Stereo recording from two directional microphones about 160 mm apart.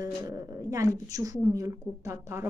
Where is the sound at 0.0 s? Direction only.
20° right (ahead or behind).